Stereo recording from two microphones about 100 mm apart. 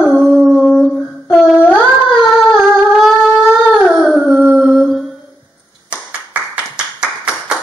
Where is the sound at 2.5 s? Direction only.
5° right (ahead or behind).